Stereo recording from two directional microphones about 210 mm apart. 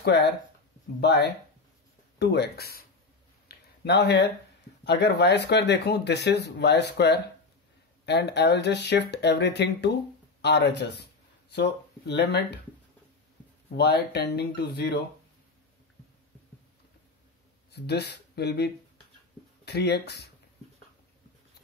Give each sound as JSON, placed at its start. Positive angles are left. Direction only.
{"t": 0.0, "sound": "speech", "side_deg": 50}
{"t": 3.4, "sound": "a sound", "side_deg": 50}
{"t": 4.8, "sound": "speech", "side_deg": 50}
{"t": 13.7, "sound": "speech", "side_deg": 50}
{"t": 17.6, "sound": "speech", "side_deg": 50}